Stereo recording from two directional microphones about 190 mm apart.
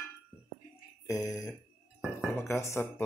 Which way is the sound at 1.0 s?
20° left (ahead or behind).